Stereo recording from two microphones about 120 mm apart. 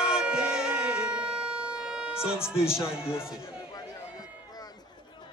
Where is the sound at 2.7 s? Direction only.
20° left (ahead or behind).